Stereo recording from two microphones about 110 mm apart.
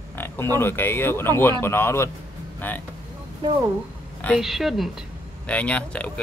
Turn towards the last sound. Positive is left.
turn(degrees=10)  # may be behind; listen again after turning